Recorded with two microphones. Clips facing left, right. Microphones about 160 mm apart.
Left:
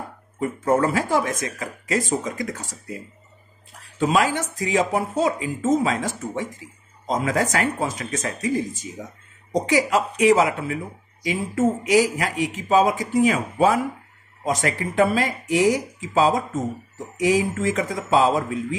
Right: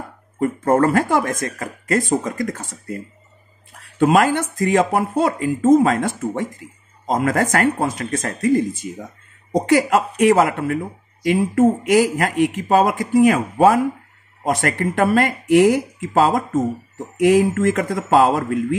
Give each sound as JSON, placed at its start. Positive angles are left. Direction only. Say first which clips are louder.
{"t": 0.4, "sound": "speech", "louder": "right 4 dB", "side_deg": -50}
{"t": 4.0, "sound": "speech", "louder": "right 5 dB", "side_deg": -55}